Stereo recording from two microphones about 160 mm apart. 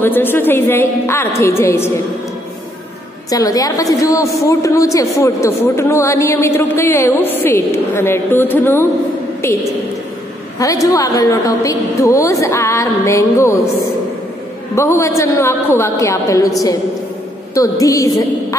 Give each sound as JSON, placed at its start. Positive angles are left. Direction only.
{"t": 0.0, "sound": "a woman's voice", "side_deg": 15}
{"t": 3.3, "sound": "a woman's voice", "side_deg": 20}
{"t": 10.6, "sound": "a woman's voice", "side_deg": 20}
{"t": 14.8, "sound": "a woman's voice", "side_deg": 20}
{"t": 17.6, "sound": "a woman's voice", "side_deg": 20}